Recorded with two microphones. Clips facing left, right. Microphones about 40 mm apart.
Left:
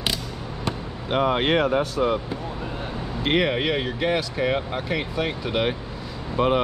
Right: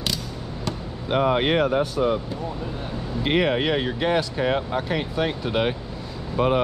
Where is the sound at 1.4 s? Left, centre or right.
Left.